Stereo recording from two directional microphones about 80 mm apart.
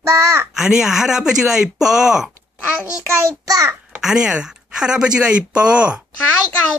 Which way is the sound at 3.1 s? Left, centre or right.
Right.